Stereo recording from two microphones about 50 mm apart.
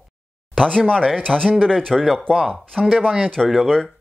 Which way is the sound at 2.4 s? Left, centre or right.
Centre.